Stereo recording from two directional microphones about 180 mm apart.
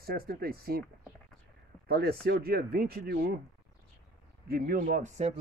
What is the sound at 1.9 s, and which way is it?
Speech, 60° right (ahead or behind).